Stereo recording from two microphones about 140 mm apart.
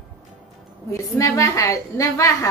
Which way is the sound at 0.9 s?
25° left (ahead or behind).